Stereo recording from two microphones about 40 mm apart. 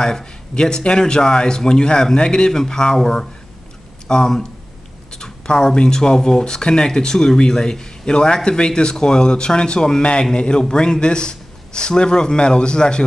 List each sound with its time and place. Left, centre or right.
0.0 s speech: centre
5.1 s a sound: centre
5.8 s speech: centre